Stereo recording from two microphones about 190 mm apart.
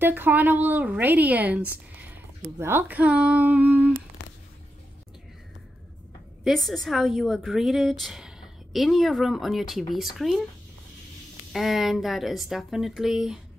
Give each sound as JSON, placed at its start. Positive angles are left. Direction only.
{"t": 0.0, "sound": "a woman's voice", "side_deg": -10}
{"t": 4.2, "sound": "a sound", "side_deg": 70}
{"t": 6.4, "sound": "speech", "side_deg": 0}
{"t": 11.5, "sound": "speech", "side_deg": 0}